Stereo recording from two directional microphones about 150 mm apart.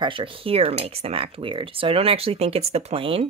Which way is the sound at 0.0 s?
35° right (ahead or behind).